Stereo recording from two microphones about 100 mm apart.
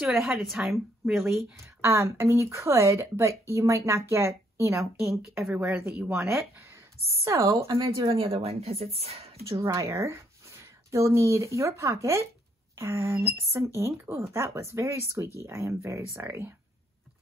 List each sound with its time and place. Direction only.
0.5 s speech: 5° right (ahead or behind)
1.8 s speech: 30° right (ahead or behind)
5.5 s speech: 15° right (ahead or behind)
7.2 s speech: 30° right (ahead or behind)
7.5 s speech: 65° right (ahead or behind)
9.6 s a woman's voice: 30° right (ahead or behind)